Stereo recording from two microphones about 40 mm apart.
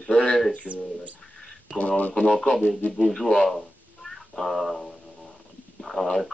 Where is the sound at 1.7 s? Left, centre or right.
Left.